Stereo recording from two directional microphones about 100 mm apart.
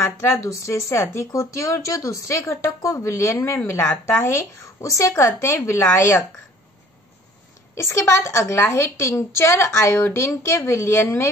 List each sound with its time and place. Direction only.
0.0 s speech: 25° left (ahead or behind)
7.7 s speech: 30° left (ahead or behind)